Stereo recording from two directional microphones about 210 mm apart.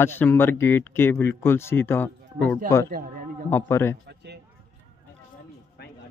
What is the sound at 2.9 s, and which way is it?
Speech, 45° right (ahead or behind).